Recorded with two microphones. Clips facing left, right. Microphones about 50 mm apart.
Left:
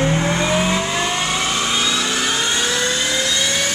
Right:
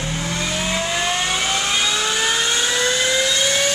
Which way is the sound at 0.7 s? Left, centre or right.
Centre.